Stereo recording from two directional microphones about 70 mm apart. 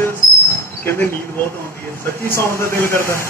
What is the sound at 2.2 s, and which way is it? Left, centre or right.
Speech, left.